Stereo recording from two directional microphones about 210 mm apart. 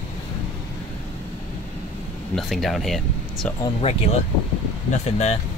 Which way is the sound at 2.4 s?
Centre (ahead or behind).